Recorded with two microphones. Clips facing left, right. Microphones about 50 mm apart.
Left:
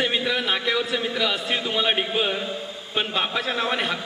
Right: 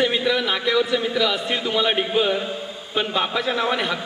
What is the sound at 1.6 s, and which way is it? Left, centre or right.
Speech, centre.